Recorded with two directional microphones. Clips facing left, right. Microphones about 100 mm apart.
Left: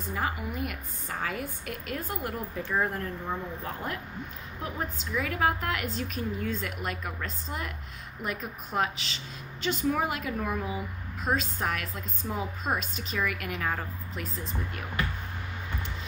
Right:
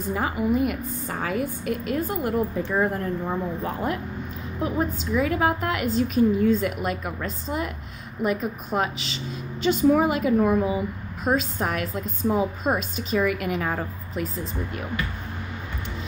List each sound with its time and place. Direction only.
0.1 s a woman's voice: 15° right (ahead or behind)